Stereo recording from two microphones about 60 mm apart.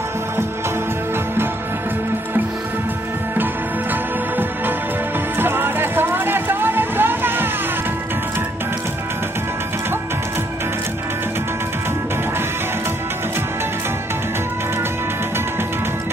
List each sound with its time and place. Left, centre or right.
5.4 s music: right